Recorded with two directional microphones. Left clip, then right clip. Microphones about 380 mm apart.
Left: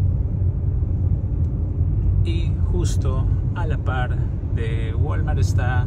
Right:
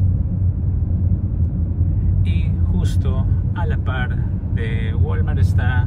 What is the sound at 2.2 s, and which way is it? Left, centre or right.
Speech, centre.